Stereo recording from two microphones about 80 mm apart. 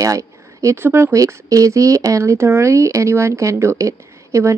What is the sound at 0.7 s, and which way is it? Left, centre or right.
Speech, right.